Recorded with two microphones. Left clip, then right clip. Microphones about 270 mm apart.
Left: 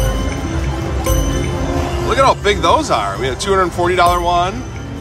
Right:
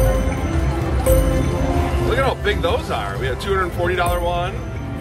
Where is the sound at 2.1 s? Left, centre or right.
Left.